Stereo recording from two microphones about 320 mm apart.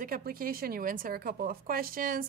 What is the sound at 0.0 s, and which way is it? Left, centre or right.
Speech, right.